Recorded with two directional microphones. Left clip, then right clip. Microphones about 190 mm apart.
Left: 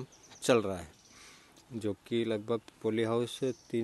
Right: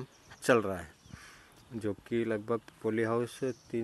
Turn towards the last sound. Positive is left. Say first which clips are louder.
# left 1 dB
turn(degrees=15)  # may be behind; listen again after turning